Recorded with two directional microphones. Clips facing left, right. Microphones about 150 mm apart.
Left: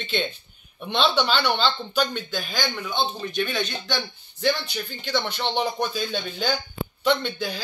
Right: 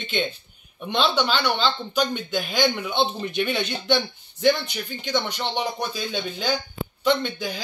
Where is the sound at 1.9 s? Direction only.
15° right (ahead or behind).